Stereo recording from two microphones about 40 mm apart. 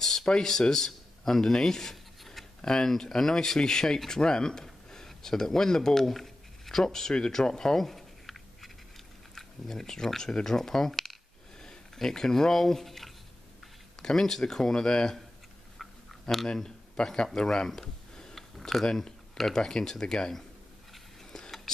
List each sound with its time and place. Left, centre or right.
0.0 s a man's voice: centre
4.9 s writing: centre
9.3 s speech: centre
15.8 s chewing: centre
16.4 s speech: centre
17.6 s a sound: centre
19.3 s speech: centre
21.3 s a sound: centre